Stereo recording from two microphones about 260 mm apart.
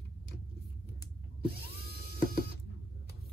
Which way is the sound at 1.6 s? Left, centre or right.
Left.